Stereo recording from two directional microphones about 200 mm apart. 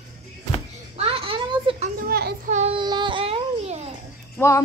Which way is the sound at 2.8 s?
25° right (ahead or behind).